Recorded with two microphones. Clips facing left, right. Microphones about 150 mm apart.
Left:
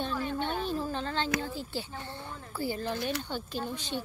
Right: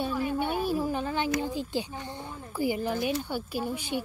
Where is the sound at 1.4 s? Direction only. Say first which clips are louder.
Right 5 dB; 15° right (ahead or behind).